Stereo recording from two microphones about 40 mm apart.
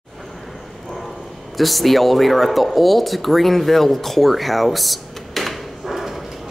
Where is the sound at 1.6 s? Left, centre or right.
Centre.